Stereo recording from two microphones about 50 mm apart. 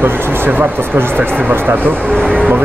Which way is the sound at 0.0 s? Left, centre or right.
Right.